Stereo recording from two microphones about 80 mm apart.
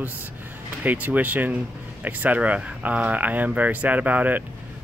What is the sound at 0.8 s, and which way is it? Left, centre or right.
Speech, right.